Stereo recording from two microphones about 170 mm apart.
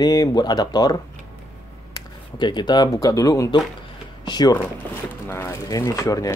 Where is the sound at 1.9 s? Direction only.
25° left (ahead or behind).